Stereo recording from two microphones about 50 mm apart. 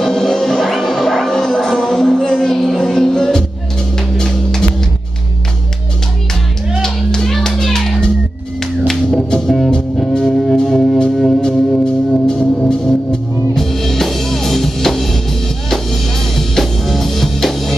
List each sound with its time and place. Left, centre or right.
0.0 s music: centre
6.8 s music: centre